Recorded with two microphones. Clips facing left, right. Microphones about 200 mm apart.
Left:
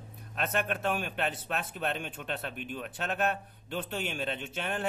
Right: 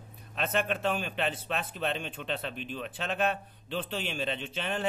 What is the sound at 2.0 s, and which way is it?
Speech, 50° left (ahead or behind).